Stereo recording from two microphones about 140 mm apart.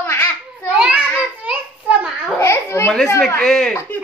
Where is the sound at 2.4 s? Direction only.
20° left (ahead or behind).